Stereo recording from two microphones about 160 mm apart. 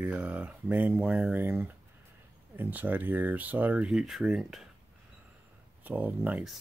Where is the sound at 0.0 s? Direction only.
10° right (ahead or behind).